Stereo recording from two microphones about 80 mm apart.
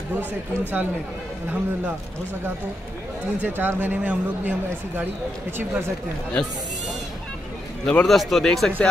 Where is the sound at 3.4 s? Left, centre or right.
Right.